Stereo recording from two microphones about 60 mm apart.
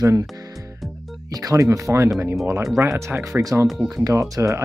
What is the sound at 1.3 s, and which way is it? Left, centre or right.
Speech, right.